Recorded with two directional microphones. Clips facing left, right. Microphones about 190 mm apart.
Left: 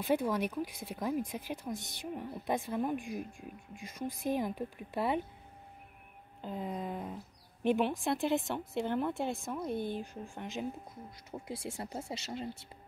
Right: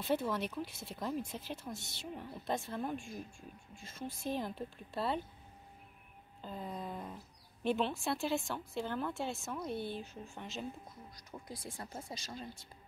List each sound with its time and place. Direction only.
0.0 s speech: 15° left (ahead or behind)
6.4 s speech: 15° left (ahead or behind)
9.1 s a woman's voice: 55° left (ahead or behind)
9.5 s speech: 15° left (ahead or behind)
11.3 s speech: 25° left (ahead or behind)